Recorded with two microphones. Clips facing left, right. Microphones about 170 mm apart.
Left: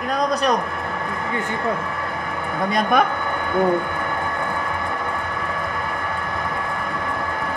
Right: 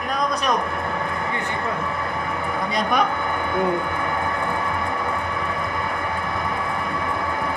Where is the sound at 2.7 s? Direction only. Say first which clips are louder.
Left 4 dB; 50° left (ahead or behind).